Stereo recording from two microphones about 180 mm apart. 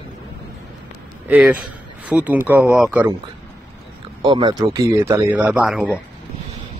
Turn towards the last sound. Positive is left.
turn(degrees=-5)  # may be behind; listen again after turning